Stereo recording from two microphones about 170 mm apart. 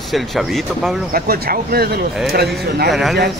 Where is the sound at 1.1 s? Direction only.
60° right (ahead or behind).